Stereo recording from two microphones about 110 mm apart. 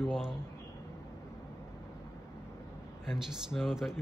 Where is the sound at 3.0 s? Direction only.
5° right (ahead or behind).